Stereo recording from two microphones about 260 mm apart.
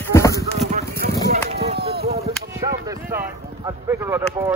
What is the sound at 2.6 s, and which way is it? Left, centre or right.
Speech, centre.